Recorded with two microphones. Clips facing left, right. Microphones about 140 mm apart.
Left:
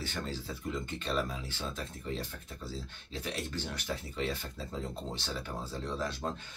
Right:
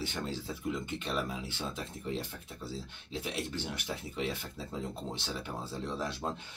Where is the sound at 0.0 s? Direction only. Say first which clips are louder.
Right 1 dB; 20° right (ahead or behind).